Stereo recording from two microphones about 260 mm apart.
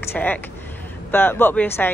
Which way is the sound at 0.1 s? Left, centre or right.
Centre.